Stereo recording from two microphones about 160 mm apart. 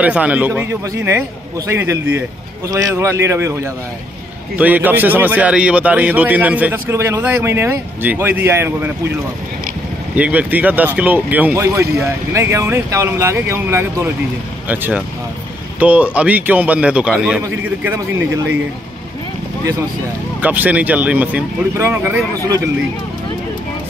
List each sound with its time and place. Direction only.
0.0 s a man's voice: 10° right (ahead or behind)
10.1 s a man's voice: 10° right (ahead or behind)
17.4 s a man's voice: 20° right (ahead or behind)
20.3 s a man's voice: 10° right (ahead or behind)